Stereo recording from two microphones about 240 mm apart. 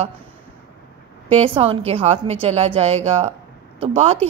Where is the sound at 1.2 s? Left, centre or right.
Right.